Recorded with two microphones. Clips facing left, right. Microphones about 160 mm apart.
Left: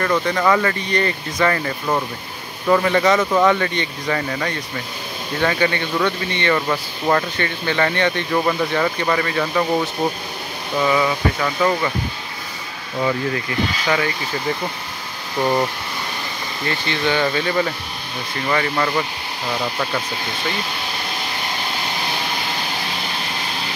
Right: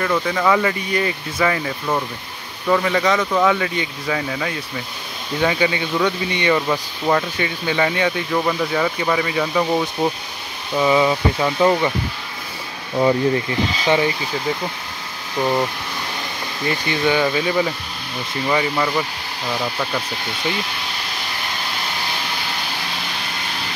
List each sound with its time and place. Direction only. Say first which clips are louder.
0.0 s speech: left 1 dB; centre (ahead or behind)
2.7 s speech: left 2 dB; centre (ahead or behind)
10.8 s speech: right 2 dB; 20° right (ahead or behind)
13.0 s speech: right 5 dB; 25° right (ahead or behind)
15.4 s speech: left 1 dB; 5° left (ahead or behind)
16.8 s speech: right 1 dB; 10° right (ahead or behind)